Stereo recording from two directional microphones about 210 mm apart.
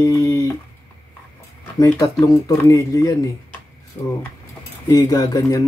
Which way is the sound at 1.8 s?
15° left (ahead or behind).